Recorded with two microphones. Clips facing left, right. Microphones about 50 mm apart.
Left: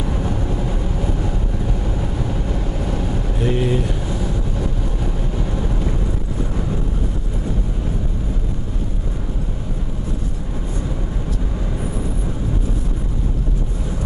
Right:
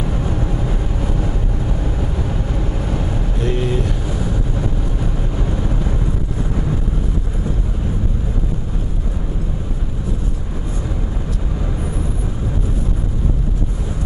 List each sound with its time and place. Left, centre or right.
3.3 s vehicle: centre